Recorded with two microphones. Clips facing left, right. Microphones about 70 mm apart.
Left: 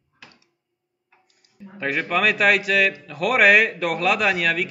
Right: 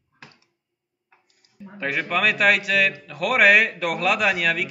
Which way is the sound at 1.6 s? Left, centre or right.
Centre.